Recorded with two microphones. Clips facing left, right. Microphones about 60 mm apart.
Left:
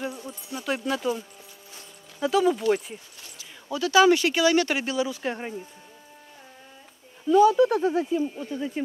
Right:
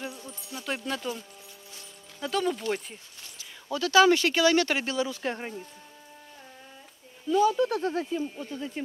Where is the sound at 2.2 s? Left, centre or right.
Centre.